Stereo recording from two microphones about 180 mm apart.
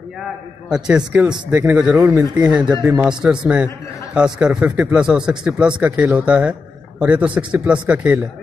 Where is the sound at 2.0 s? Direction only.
20° right (ahead or behind).